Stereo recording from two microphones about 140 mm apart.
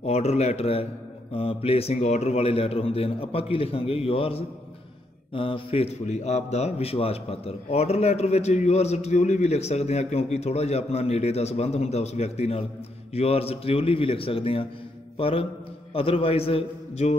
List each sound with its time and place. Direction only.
0.0 s a man's voice: 50° left (ahead or behind)